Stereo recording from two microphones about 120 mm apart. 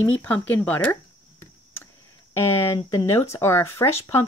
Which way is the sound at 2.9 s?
20° left (ahead or behind).